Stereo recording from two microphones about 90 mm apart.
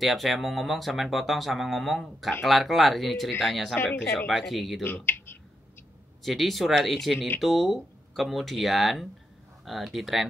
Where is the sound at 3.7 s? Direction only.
25° left (ahead or behind).